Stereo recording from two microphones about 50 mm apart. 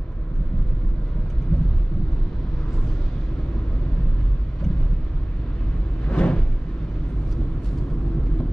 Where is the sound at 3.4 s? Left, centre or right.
Centre.